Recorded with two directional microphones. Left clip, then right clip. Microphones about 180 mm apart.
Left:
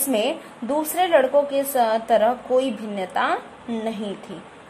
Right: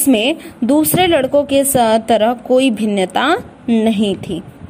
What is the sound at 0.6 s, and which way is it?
A woman's voice, 40° right (ahead or behind).